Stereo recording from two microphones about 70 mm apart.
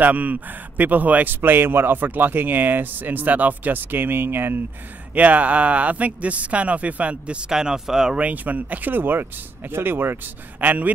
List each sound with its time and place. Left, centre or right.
0.0 s a man's voice: right
5.1 s a man's voice: right
8.2 s a man's voice: right